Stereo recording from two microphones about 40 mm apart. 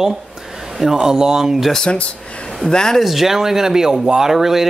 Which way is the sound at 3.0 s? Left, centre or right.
Centre.